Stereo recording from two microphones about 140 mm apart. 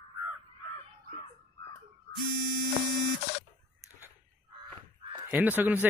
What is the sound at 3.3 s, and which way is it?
Buzzer, 45° left (ahead or behind).